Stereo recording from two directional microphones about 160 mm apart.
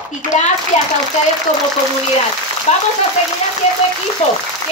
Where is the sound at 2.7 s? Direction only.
45° left (ahead or behind).